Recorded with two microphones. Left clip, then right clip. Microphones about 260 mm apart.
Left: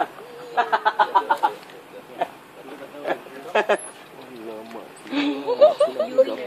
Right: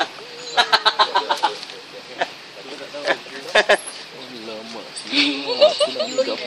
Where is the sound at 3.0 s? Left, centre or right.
Centre.